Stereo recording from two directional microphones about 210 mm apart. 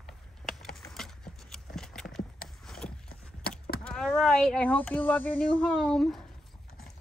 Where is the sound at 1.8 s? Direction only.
Centre (ahead or behind).